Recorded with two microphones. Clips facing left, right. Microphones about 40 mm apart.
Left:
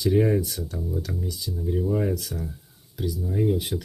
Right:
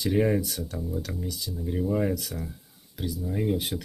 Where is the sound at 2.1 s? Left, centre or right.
Right.